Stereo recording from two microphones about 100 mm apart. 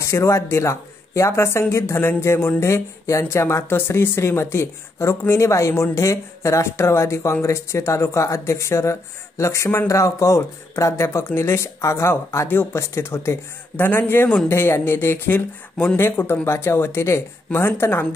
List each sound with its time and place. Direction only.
0.0 s speech: 30° left (ahead or behind)